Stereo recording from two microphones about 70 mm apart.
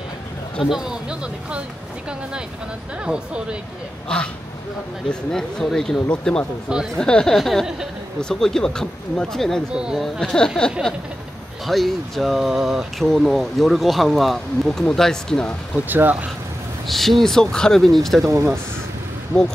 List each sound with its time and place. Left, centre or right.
0.7 s speech: centre
3.1 s speech: centre
4.1 s speech: centre
5.3 s speech: centre
15.9 s speech: right
16.8 s speech: centre
18.2 s speech: right